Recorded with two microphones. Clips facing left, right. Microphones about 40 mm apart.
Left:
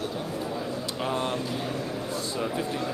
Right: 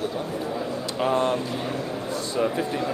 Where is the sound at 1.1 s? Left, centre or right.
Centre.